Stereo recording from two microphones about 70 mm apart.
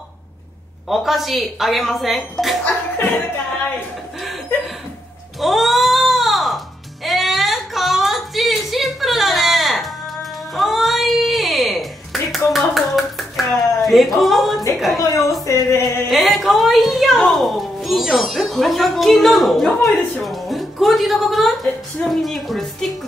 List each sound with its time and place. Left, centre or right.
0.8 s speech: centre
5.4 s a sound: centre
12.5 s hands: centre
15.0 s a sound: left
15.4 s music: left
16.1 s a child's voice: centre